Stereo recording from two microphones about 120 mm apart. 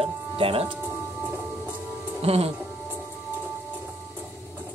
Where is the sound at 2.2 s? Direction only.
55° right (ahead or behind).